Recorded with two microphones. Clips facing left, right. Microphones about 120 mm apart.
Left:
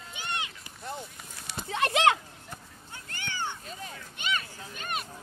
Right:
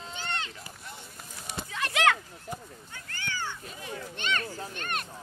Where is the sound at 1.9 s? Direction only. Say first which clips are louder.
Left 1 dB; 20° left (ahead or behind).